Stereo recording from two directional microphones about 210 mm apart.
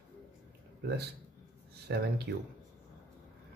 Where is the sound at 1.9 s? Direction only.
55° right (ahead or behind).